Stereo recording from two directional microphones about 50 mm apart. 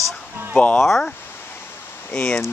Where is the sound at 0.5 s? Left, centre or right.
Left.